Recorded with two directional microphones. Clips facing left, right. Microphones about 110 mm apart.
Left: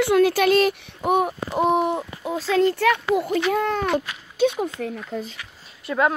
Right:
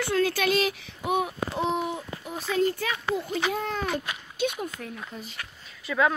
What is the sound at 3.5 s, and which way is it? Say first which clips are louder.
Speech: left 7 dB; 60° left (ahead or behind).